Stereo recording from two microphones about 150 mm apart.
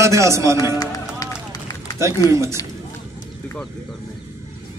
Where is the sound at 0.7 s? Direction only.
25° left (ahead or behind).